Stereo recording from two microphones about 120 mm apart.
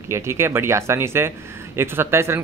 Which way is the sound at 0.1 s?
20° right (ahead or behind).